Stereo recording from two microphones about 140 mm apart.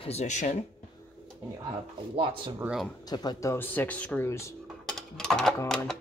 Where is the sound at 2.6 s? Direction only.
5° right (ahead or behind).